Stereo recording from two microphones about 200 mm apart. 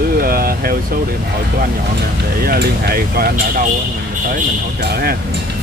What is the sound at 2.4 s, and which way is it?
Speech, 50° right (ahead or behind).